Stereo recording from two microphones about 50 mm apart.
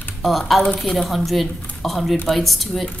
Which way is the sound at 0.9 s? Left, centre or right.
Centre.